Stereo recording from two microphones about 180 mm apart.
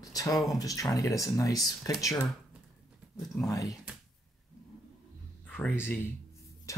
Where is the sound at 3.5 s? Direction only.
20° left (ahead or behind).